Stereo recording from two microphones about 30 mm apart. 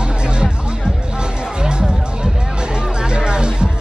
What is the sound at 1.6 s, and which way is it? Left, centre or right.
Music, right.